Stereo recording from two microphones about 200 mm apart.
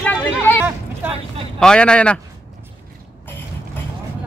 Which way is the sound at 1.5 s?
5° left (ahead or behind).